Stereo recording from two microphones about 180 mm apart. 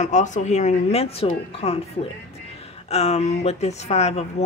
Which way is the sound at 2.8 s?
35° left (ahead or behind).